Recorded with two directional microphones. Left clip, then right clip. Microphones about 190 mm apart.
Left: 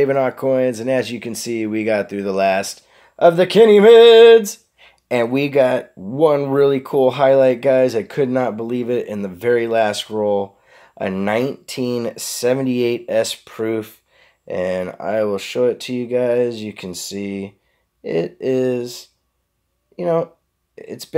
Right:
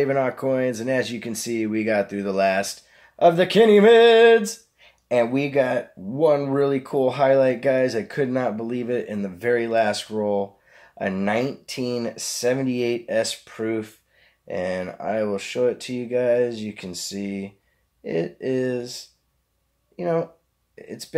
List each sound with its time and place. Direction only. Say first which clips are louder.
0.0 s speech: left 5 dB; 25° left (ahead or behind)